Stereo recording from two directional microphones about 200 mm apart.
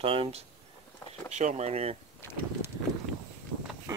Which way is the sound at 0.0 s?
25° right (ahead or behind).